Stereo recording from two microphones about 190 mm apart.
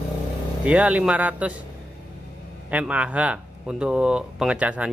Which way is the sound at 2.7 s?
5° right (ahead or behind).